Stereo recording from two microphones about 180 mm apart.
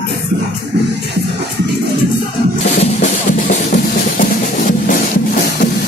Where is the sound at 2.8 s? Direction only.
40° left (ahead or behind).